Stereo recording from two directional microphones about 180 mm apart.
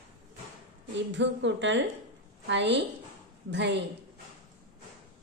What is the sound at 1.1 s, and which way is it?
Speech, 90° right.